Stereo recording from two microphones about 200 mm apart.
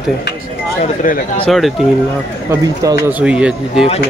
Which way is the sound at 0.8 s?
40° left (ahead or behind).